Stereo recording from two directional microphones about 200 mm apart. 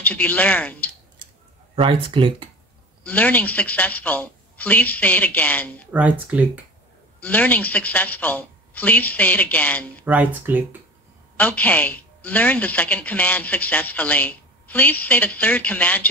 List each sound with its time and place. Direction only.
0.0 s speech: 10° left (ahead or behind)
1.8 s speech: 25° right (ahead or behind)
3.0 s a woman's voice: 5° left (ahead or behind)
5.9 s speech: 10° right (ahead or behind)
7.2 s a woman's voice: 5° left (ahead or behind)
10.0 s speech: 10° right (ahead or behind)
11.3 s a woman's voice: 5° left (ahead or behind)